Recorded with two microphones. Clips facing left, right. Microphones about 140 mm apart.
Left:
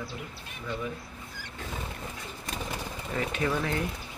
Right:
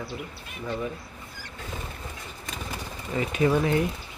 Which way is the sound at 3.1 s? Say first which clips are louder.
Right 6 dB; 15° right (ahead or behind).